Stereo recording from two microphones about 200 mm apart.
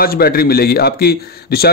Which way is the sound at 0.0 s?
50° left (ahead or behind).